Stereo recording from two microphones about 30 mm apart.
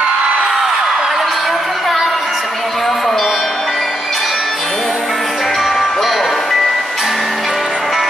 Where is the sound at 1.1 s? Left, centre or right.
Centre.